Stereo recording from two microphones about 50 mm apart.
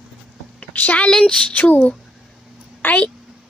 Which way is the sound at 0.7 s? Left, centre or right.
Left.